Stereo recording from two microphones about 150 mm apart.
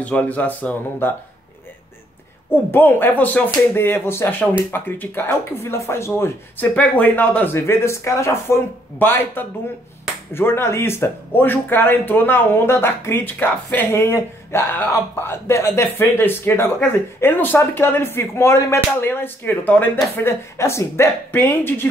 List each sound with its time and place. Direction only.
0.0 s speech: 10° left (ahead or behind)
2.5 s speech: 15° left (ahead or behind)